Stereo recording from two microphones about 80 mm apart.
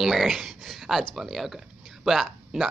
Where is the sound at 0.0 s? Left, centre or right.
Centre.